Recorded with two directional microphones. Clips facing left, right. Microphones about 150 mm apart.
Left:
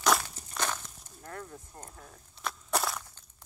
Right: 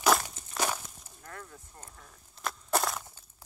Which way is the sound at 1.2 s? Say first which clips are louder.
Left 4 dB; 35° left (ahead or behind).